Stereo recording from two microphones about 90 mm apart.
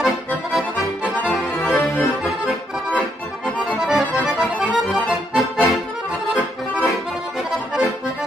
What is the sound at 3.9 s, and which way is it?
Accordion, 5° right (ahead or behind).